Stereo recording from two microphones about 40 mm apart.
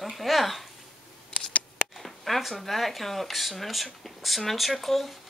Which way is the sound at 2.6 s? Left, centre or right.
Centre.